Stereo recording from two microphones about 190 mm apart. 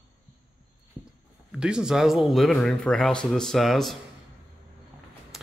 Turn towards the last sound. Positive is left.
turn(degrees=0)  # may be behind; listen again after turning